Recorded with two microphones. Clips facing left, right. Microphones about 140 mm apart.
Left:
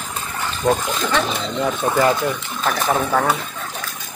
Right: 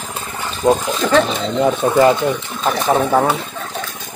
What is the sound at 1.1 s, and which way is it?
Speech, 30° right (ahead or behind).